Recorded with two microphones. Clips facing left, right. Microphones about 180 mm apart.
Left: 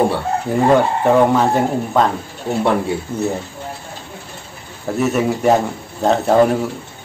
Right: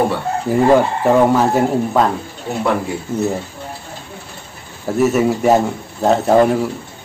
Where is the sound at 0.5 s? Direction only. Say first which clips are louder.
Right 2 dB; centre (ahead or behind).